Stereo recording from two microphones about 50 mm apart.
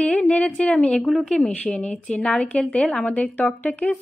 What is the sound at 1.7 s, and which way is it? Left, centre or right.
A woman's voice, left.